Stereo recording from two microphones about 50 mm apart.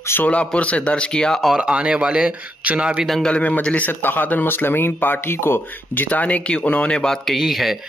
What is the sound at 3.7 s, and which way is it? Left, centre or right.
Speech, left.